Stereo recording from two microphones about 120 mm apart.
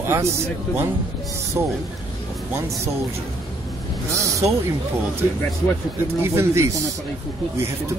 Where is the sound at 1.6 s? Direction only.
30° right (ahead or behind).